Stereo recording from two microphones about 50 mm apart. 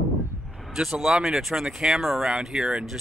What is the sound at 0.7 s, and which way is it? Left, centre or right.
Speech, centre.